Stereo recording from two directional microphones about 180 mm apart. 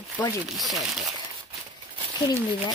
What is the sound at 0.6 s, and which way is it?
Speech, centre (ahead or behind).